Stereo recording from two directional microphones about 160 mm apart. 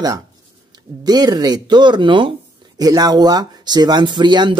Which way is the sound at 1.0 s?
25° right (ahead or behind).